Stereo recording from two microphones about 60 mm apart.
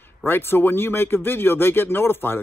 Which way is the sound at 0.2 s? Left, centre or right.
Left.